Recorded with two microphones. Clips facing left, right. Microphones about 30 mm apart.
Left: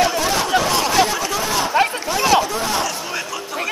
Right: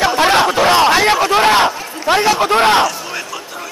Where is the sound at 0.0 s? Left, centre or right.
Right.